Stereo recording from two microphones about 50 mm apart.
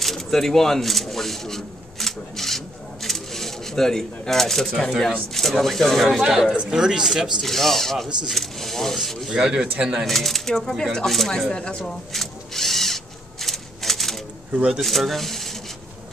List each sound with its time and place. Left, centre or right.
0.0 s a sound: centre
5.0 s speech: centre
6.1 s speech: centre
7.4 s speech: centre
9.3 s speech: centre
10.0 s speech: centre
11.1 s a sound: centre
14.8 s speech: centre